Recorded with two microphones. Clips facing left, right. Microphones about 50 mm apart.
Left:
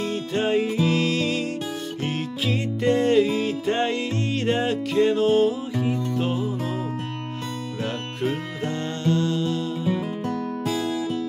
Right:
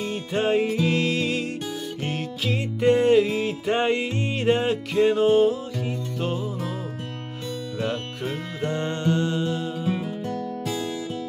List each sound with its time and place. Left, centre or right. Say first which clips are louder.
0.1 s music: right 1 dB; centre
6.1 s music: left 3 dB; centre
7.8 s music: left 2 dB; centre
8.7 s music: even; centre
10.0 s music: left 2 dB; left